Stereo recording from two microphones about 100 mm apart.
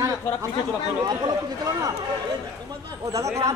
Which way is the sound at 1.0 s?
45° right (ahead or behind).